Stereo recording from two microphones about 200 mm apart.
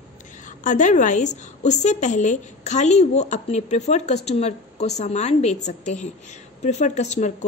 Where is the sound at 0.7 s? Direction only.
40° left (ahead or behind).